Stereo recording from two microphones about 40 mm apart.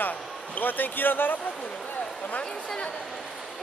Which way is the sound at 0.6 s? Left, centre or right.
Left.